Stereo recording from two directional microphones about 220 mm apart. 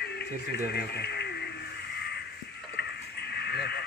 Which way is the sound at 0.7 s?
50° left (ahead or behind).